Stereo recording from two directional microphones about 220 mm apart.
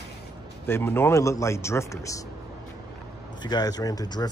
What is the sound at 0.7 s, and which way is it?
Speech, 10° left (ahead or behind).